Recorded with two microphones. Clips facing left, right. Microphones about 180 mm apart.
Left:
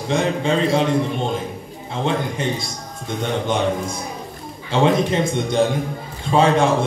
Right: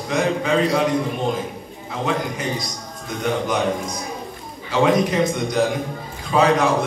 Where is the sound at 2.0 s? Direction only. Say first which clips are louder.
Left 2 dB; 25° left (ahead or behind).